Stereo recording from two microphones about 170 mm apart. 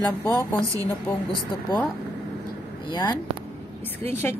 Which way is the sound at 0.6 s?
5° left (ahead or behind).